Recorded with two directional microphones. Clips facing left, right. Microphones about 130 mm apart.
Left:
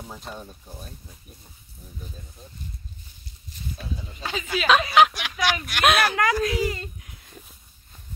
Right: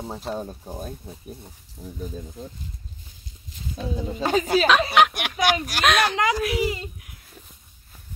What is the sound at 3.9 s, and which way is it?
Speech, 45° right (ahead or behind).